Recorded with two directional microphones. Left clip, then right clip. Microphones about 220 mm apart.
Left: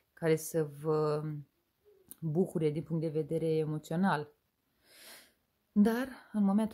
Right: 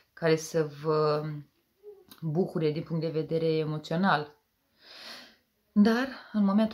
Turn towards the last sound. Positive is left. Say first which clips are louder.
# right 5 dB
turn(degrees=45)  # may be behind; listen again after turning